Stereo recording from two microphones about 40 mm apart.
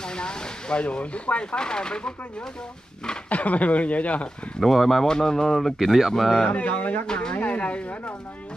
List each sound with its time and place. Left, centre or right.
0.1 s speech: left
3.3 s speech: left
4.6 s speech: centre
5.0 s speech: centre
5.8 s speech: centre
6.5 s speech: left